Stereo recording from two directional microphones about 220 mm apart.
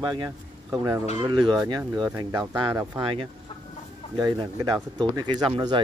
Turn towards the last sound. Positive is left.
turn(degrees=-25)  # may be behind; listen again after turning